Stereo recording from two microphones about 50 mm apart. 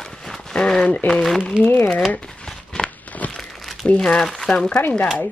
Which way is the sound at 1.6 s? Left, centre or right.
Left.